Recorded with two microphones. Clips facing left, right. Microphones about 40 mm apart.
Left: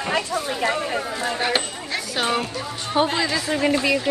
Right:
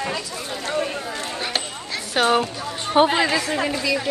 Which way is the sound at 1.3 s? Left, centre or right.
Centre.